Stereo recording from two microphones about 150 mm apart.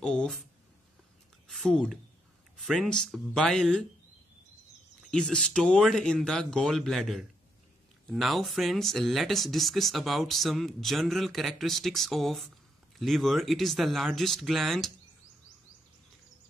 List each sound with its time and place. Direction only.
0.0 s a sound: 5° left (ahead or behind)
1.5 s a woman's voice: centre (ahead or behind)
5.0 s speech: 5° left (ahead or behind)